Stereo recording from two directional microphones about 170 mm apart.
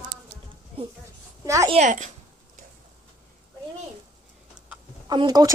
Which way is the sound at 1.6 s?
45° right (ahead or behind).